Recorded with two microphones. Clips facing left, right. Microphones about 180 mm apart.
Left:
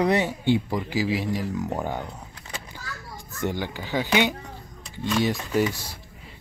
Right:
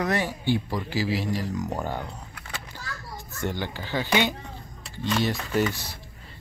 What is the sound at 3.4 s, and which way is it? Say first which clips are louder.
Speech: left 2 dB; 10° left (ahead or behind).